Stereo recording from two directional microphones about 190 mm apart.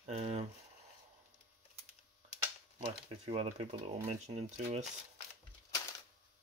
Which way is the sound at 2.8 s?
35° right (ahead or behind).